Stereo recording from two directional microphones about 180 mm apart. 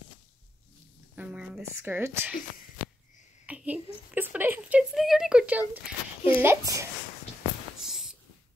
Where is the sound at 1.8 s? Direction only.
10° right (ahead or behind).